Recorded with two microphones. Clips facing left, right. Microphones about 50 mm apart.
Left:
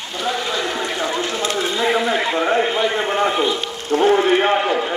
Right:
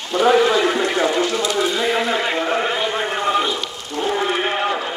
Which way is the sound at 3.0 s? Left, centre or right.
Left.